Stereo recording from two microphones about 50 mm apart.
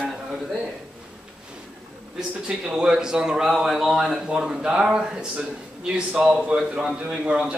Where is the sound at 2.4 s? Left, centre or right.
Centre.